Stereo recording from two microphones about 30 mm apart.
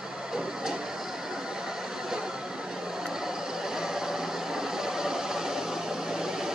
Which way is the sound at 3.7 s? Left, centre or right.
Centre.